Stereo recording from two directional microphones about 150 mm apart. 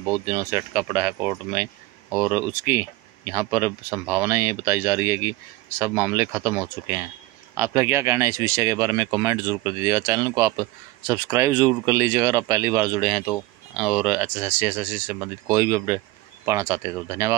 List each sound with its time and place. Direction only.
0.0 s speech: 15° right (ahead or behind)
13.7 s speech: 5° right (ahead or behind)